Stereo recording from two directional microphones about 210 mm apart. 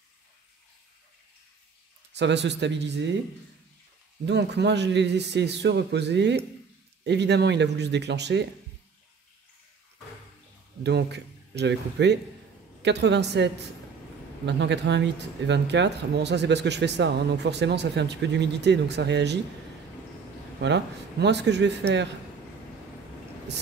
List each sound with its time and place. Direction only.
2.1 s speech: 55° right (ahead or behind)
4.3 s speech: 55° right (ahead or behind)
10.8 s speech: 55° right (ahead or behind)
20.6 s speech: 55° right (ahead or behind)